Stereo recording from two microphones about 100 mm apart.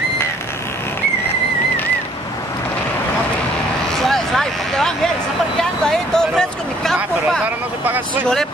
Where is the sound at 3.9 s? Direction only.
5° left (ahead or behind).